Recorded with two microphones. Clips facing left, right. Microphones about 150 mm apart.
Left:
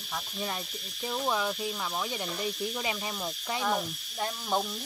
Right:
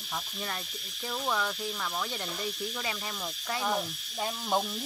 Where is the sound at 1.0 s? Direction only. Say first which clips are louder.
Left 2 dB; 15° left (ahead or behind).